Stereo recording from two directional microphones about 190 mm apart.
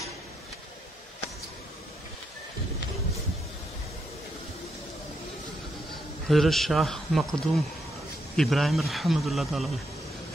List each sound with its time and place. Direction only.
6.2 s a man's voice: centre (ahead or behind)